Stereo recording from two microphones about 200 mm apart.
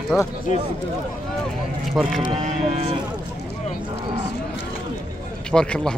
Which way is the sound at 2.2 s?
35° right (ahead or behind).